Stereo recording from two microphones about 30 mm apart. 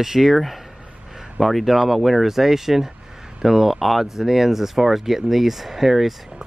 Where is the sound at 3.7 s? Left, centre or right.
Centre.